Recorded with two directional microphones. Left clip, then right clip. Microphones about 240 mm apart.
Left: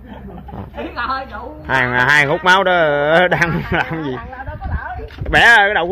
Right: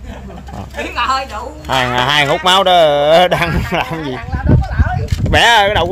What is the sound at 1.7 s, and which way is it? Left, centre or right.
Speech, centre.